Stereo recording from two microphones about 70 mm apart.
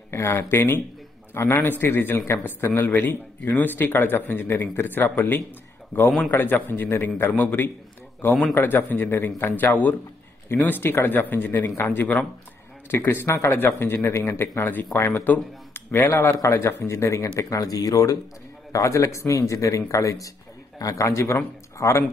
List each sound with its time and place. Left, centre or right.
0.1 s speech: left
15.0 s speech: left
15.2 s speech: left
15.9 s speech: left
17.4 s speech: left